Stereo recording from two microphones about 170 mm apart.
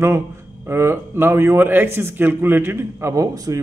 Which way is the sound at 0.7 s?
15° right (ahead or behind).